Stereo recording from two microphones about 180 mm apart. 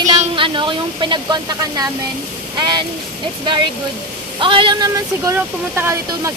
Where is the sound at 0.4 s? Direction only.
25° right (ahead or behind).